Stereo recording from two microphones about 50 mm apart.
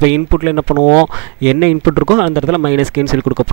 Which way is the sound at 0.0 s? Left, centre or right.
Centre.